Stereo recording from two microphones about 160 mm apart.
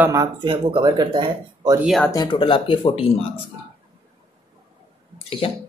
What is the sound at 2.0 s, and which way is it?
Speech, 25° left (ahead or behind).